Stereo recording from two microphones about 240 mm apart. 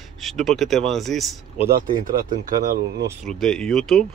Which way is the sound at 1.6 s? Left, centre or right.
Right.